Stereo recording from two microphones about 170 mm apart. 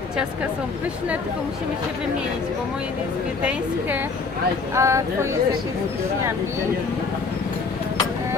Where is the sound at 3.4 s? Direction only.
10° right (ahead or behind).